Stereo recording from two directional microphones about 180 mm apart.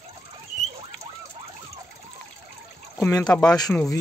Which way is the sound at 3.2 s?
5° left (ahead or behind).